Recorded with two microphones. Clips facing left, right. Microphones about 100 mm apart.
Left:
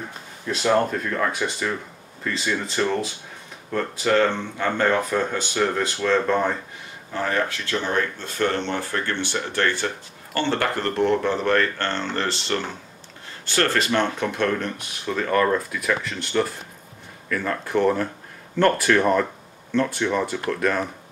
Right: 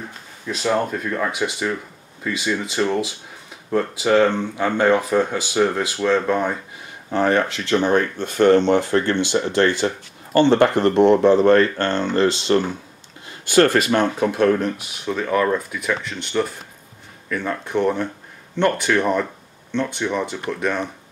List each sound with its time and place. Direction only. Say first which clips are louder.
0.5 s speech: left 1 dB; centre (ahead or behind)
7.7 s speech: right 8 dB; 55° right (ahead or behind)
8.4 s speech: right 10 dB; 20° right (ahead or behind); by 20.9 s centre (ahead or behind)